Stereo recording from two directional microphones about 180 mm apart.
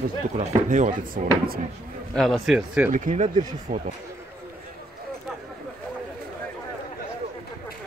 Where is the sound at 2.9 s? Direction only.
45° right (ahead or behind).